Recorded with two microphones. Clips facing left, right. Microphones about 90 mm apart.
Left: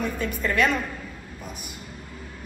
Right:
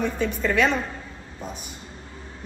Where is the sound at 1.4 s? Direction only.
30° right (ahead or behind).